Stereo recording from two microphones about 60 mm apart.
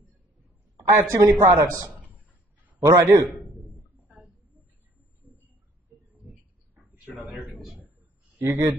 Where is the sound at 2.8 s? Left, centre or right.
Right.